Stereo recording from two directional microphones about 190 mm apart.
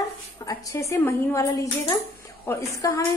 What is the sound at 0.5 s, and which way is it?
Speech, 15° left (ahead or behind).